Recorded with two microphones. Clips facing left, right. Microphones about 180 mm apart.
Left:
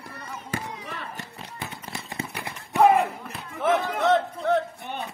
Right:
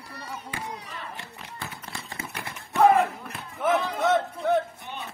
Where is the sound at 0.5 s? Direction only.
45° left (ahead or behind).